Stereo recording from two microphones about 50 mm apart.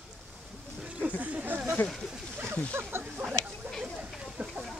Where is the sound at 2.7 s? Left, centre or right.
Right.